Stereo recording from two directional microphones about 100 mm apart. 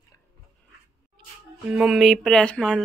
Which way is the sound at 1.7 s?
10° right (ahead or behind).